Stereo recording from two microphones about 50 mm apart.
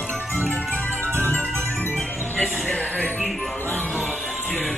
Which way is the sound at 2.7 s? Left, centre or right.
Left.